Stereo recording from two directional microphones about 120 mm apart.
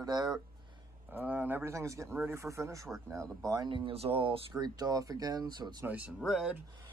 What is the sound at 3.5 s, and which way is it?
Speech, 40° right (ahead or behind).